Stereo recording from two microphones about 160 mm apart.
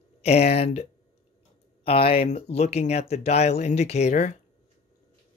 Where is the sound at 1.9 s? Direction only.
35° left (ahead or behind).